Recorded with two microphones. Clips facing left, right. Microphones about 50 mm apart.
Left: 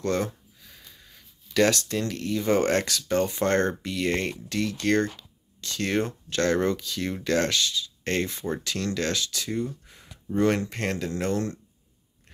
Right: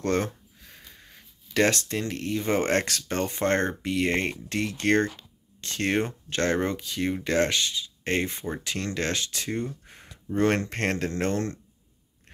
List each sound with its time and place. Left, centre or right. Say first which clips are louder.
0.0 s speech: right 1 dB; right